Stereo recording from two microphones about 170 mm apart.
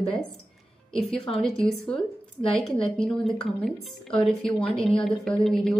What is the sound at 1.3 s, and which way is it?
Speech, 5° left (ahead or behind).